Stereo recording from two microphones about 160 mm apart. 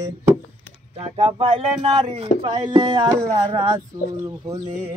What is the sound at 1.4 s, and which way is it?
Speech, 35° right (ahead or behind).